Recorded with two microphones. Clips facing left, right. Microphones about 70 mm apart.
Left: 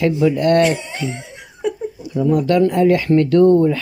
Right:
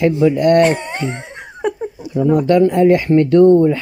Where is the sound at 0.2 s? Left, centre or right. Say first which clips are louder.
Right 3 dB; right.